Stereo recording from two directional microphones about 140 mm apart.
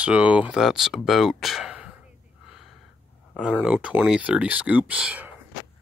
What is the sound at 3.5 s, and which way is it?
Speech, 10° right (ahead or behind).